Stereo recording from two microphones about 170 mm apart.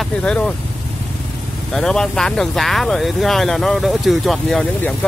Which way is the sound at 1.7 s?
5° left (ahead or behind).